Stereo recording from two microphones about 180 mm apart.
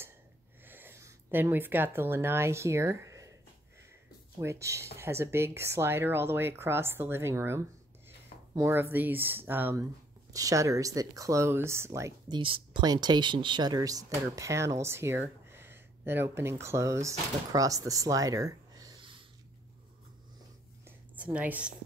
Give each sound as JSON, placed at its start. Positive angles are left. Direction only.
{"t": 0.7, "sound": "speech", "side_deg": -10}
{"t": 4.4, "sound": "speech", "side_deg": -15}
{"t": 12.4, "sound": "speech", "side_deg": -30}
{"t": 21.2, "sound": "speech", "side_deg": -5}